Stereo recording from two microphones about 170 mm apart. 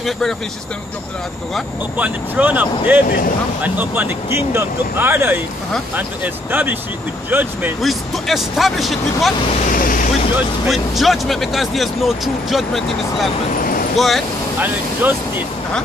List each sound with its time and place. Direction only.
0.0 s speech: centre (ahead or behind)
1.5 s speech: 5° right (ahead or behind)
7.8 s speech: centre (ahead or behind)
9.7 s vehicle: 55° left (ahead or behind)
10.3 s speech: centre (ahead or behind)
14.6 s speech: 10° right (ahead or behind)